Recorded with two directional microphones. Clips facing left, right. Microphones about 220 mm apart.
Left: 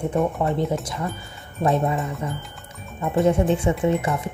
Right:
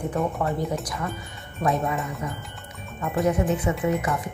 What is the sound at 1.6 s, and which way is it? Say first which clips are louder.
Speech: left 3 dB; 30° left (ahead or behind).